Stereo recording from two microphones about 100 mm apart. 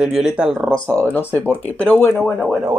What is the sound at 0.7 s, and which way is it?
Speech, 10° left (ahead or behind).